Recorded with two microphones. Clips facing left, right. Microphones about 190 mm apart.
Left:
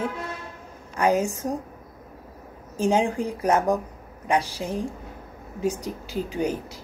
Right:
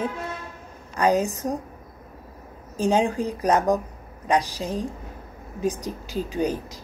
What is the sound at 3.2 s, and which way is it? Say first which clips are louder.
Speech: right 1 dB; 15° right (ahead or behind).